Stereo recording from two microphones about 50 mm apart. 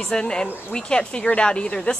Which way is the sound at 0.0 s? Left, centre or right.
Centre.